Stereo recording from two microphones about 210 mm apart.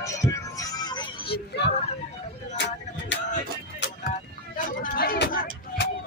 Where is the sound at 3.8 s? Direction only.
40° left (ahead or behind).